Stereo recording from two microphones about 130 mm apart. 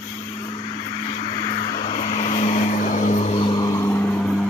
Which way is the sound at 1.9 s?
55° left (ahead or behind).